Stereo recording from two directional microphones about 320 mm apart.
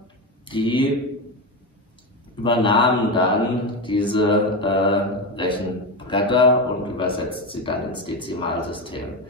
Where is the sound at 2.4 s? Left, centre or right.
Centre.